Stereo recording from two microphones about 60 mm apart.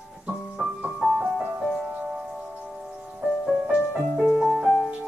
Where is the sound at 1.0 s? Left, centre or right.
Centre.